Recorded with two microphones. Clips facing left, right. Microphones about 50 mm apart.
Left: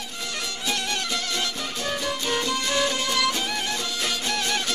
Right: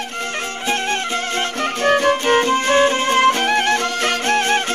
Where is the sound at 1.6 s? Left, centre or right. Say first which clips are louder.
Right 13 dB; right.